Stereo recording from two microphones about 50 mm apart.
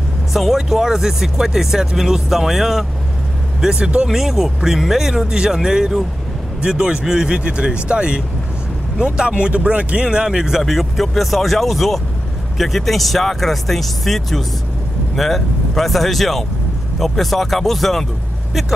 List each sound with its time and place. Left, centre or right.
0.3 s speech: centre
3.6 s speech: centre
4.1 s speech: centre; by 10.0 s right
10.0 s speech: centre